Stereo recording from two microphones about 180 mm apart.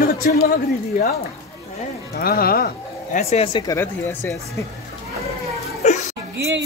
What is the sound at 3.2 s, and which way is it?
Speech, 35° left (ahead or behind).